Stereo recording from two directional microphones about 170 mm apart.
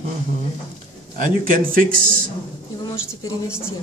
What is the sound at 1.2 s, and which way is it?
Speech, 55° right (ahead or behind).